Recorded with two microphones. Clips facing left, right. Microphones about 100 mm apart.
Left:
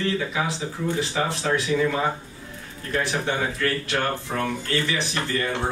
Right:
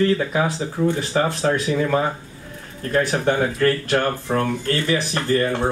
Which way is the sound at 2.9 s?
45° right (ahead or behind).